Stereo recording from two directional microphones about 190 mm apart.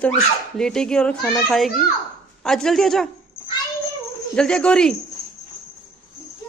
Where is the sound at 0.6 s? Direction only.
5° left (ahead or behind).